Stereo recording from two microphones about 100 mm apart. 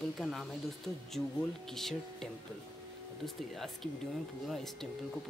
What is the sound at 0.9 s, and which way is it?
Speech, 35° left (ahead or behind).